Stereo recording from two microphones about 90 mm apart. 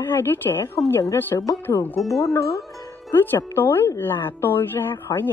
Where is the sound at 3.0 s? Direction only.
25° left (ahead or behind).